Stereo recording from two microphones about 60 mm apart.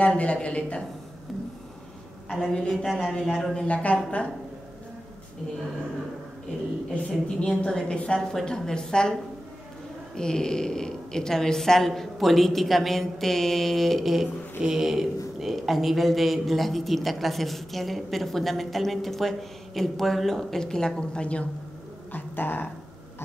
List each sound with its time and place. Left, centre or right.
0.0 s a woman's voice: centre
2.7 s a man's voice: centre
3.5 s a woman's voice: left
6.9 s a woman's voice: centre
10.1 s a man's voice: centre
22.1 s speech: left